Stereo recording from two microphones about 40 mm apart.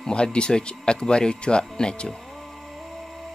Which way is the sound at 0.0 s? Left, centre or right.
Left.